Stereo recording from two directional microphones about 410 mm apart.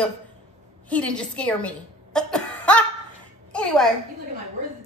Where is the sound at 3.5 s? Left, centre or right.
Centre.